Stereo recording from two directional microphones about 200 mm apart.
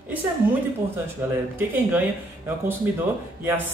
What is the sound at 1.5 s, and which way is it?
Speech, 10° right (ahead or behind).